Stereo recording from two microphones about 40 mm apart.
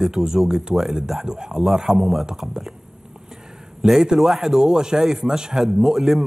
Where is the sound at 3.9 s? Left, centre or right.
Centre.